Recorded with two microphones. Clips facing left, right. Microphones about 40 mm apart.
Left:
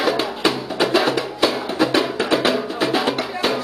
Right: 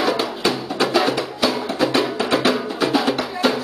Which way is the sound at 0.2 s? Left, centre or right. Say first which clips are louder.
Left 1 dB; left.